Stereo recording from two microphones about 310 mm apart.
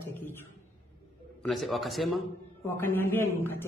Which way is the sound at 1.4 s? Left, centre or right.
Centre.